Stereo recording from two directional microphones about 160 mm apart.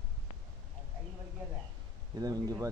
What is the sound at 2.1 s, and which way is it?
Speech, 25° right (ahead or behind).